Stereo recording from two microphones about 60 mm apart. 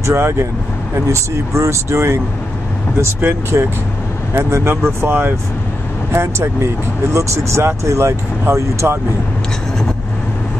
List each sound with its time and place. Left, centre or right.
0.0 s speech: right
3.2 s speech: right
6.1 s speech: right